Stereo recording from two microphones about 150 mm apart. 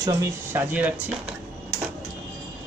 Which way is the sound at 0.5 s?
10° right (ahead or behind).